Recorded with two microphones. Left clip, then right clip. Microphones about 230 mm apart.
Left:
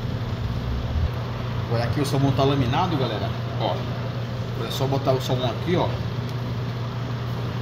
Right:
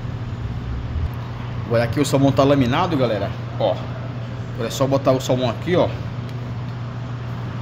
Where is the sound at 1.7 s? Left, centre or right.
Right.